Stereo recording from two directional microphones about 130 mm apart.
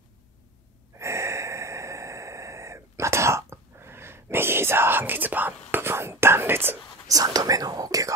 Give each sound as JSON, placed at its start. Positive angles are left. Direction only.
{"t": 0.9, "sound": "gasp", "side_deg": -20}
{"t": 7.2, "sound": "speech", "side_deg": -30}